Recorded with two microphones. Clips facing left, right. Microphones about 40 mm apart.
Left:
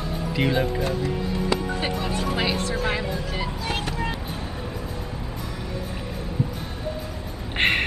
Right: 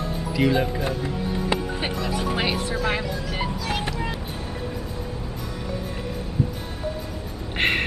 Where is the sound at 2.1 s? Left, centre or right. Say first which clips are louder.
Right 2 dB; centre.